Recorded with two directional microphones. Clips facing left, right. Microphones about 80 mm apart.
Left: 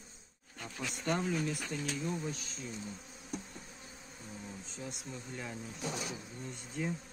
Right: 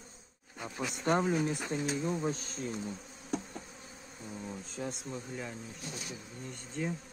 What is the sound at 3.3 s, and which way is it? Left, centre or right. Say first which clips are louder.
Insect: right 6 dB; right.